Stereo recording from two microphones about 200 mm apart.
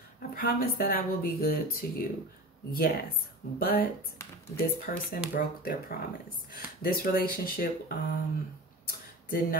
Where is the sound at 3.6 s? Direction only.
50° left (ahead or behind).